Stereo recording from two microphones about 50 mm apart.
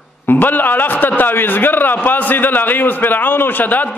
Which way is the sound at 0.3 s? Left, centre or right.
Left.